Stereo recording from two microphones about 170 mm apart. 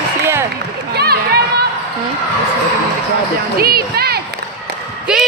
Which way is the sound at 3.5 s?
65° right (ahead or behind).